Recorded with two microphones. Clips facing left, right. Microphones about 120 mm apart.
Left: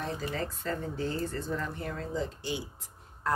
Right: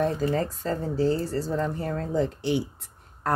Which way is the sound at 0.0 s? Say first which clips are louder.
Right 9 dB; 40° right (ahead or behind).